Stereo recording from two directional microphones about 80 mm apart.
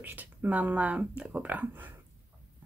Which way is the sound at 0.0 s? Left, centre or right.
Right.